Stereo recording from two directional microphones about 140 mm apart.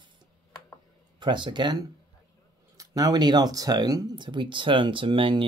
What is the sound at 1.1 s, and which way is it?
Speech, 35° right (ahead or behind).